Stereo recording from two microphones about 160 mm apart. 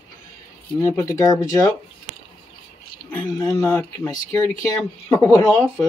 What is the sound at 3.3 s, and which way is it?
Speech, 20° left (ahead or behind).